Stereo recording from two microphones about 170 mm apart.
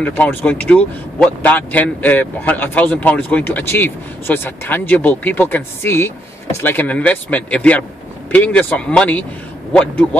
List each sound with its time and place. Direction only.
0.0 s a man's voice: 10° left (ahead or behind)